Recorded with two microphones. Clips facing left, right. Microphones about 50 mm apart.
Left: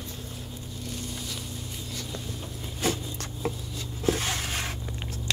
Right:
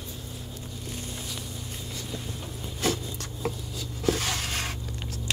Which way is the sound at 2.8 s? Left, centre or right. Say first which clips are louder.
Even; left.